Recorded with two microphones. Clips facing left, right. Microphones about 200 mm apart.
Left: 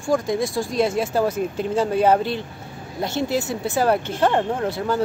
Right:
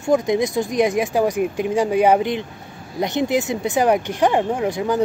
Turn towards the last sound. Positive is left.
turn(degrees=-15)  # may be behind; listen again after turning